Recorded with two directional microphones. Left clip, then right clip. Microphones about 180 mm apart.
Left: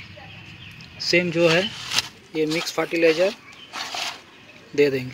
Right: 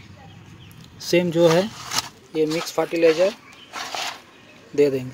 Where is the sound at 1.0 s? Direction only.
30° right (ahead or behind).